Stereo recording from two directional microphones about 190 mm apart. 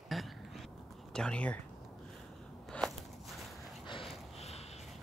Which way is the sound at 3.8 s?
25° left (ahead or behind).